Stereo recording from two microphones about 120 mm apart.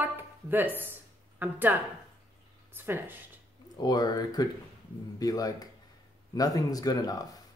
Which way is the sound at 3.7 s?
35° left (ahead or behind).